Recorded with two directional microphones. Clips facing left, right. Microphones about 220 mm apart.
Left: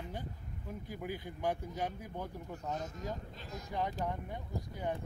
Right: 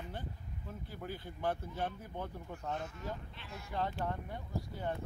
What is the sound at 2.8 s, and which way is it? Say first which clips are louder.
Speech: left 2 dB; 40° left (ahead or behind).